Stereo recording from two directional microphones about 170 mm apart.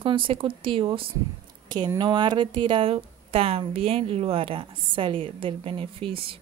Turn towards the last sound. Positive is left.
turn(degrees=-30)  # may be behind; listen again after turning